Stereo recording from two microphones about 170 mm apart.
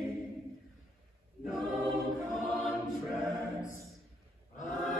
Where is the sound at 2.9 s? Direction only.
Centre (ahead or behind).